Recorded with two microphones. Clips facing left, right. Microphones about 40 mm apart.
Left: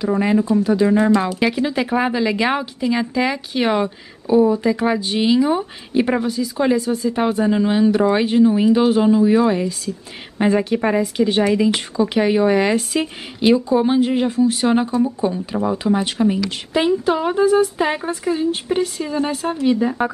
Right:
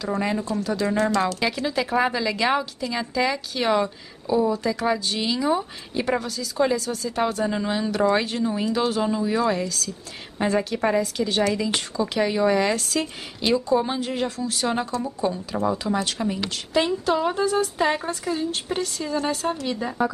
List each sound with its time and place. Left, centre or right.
0.0 s speech: centre